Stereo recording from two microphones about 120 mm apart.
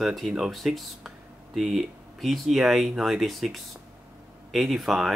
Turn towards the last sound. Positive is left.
turn(degrees=-5)  # may be behind; listen again after turning